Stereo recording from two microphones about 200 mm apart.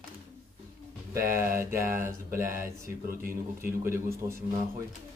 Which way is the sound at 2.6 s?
45° right (ahead or behind).